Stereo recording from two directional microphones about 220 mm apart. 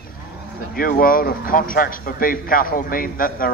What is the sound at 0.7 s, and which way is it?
A man's voice, 40° left (ahead or behind).